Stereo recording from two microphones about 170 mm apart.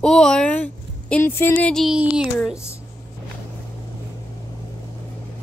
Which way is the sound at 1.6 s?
Centre (ahead or behind).